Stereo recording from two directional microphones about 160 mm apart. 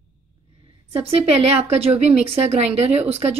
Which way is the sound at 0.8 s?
40° right (ahead or behind).